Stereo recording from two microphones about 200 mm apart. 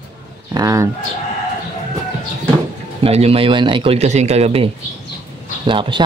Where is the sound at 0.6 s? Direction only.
15° right (ahead or behind).